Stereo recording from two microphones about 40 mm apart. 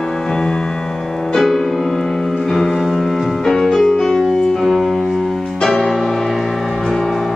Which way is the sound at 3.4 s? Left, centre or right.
Centre.